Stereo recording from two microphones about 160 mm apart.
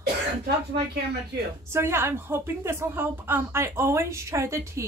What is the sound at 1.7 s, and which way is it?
A woman's voice, 15° right (ahead or behind).